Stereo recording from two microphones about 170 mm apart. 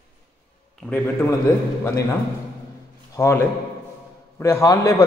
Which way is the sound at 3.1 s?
15° left (ahead or behind).